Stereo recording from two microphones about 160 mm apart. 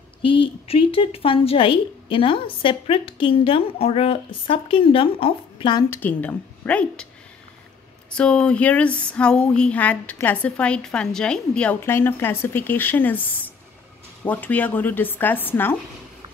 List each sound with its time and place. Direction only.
0.2 s speech: 30° left (ahead or behind)
5.9 s a woman's voice: 10° left (ahead or behind)
8.1 s a woman's voice: 5° left (ahead or behind)